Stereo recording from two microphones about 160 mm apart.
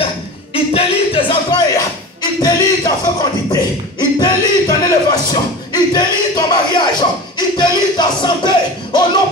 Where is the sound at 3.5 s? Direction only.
25° left (ahead or behind).